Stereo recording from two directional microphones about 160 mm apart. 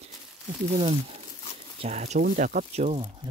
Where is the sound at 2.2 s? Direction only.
60° right (ahead or behind).